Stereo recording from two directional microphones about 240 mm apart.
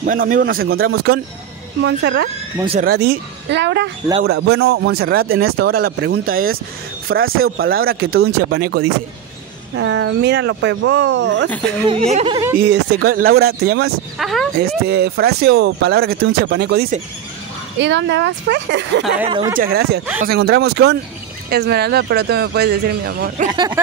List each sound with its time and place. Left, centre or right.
0.0 s speech: right
9.8 s speech: right
11.9 s speech: right
12.5 s speech: right
14.1 s speech: centre
14.9 s speech: right
19.2 s speech: right
19.5 s speech: right
23.5 s speech: centre